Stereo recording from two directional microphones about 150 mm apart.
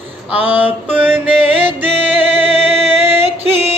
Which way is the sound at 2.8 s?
15° right (ahead or behind).